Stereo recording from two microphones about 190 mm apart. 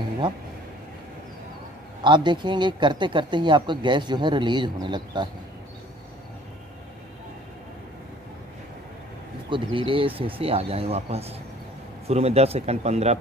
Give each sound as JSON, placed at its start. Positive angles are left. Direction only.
{"t": 2.0, "sound": "speech", "side_deg": -25}
{"t": 9.5, "sound": "speech", "side_deg": -25}